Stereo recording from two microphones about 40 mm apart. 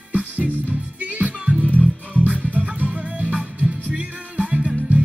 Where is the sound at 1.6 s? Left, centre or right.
Left.